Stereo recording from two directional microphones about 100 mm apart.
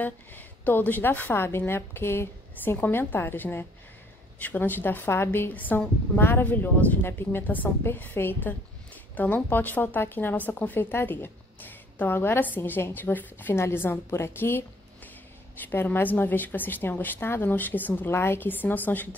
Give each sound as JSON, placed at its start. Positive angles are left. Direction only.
{"t": 0.0, "sound": "a woman's voice", "side_deg": 20}
{"t": 15.6, "sound": "a woman's voice", "side_deg": 20}